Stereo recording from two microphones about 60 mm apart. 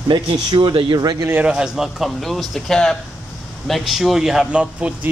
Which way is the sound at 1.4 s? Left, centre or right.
Centre.